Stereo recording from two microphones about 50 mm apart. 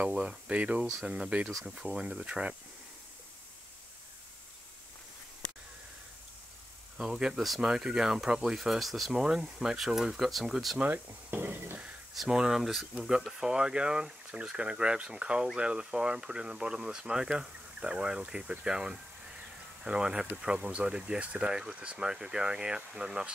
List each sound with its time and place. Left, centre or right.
0.0 s speech: centre
7.0 s speech: centre
7.3 s speech: centre
7.6 s speech: centre
9.1 s speech: centre
10.8 s speech: right
11.3 s a sound: right
12.3 s speech: centre
13.4 s speech: centre